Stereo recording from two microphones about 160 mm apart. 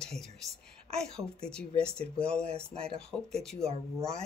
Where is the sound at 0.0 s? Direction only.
5° left (ahead or behind).